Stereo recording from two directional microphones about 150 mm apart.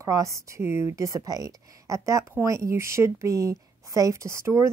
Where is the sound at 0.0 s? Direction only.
20° right (ahead or behind).